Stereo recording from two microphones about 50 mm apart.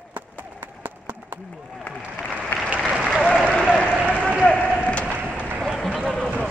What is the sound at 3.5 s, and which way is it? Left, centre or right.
Applause, left.